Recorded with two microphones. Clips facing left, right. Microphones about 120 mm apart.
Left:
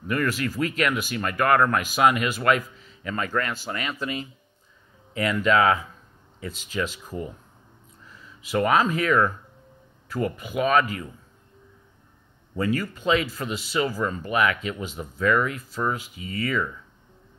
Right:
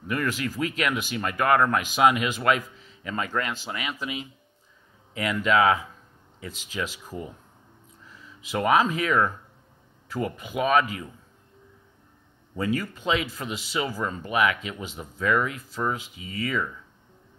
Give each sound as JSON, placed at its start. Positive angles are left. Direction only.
{"t": 0.1, "sound": "speech", "side_deg": -15}
{"t": 8.4, "sound": "speech", "side_deg": -15}
{"t": 12.5, "sound": "speech", "side_deg": -15}